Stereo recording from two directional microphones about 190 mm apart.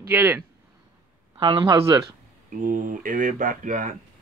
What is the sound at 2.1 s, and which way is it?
Speech, 45° right (ahead or behind).